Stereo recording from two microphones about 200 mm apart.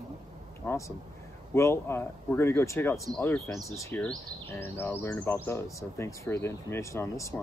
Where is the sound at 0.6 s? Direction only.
15° left (ahead or behind).